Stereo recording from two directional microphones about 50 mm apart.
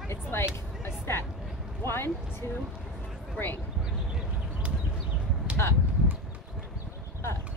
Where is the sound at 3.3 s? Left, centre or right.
Left.